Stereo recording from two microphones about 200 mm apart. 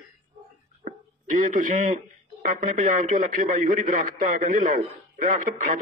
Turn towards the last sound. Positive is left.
turn(degrees=-40)  # may be behind; listen again after turning